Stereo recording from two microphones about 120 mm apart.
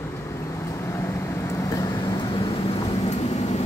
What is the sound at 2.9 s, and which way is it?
Vehicle, 60° left (ahead or behind).